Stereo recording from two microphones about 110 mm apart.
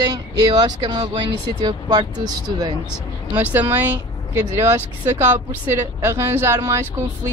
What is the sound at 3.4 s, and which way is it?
Speech, 15° right (ahead or behind).